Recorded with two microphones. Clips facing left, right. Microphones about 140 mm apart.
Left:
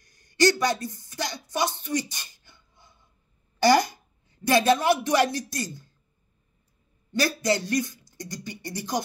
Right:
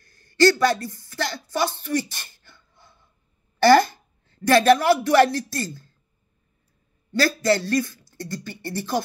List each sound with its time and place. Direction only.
0.0 s a sound: 15° left (ahead or behind)
3.5 s speech: 15° left (ahead or behind)
7.1 s speech: 20° left (ahead or behind)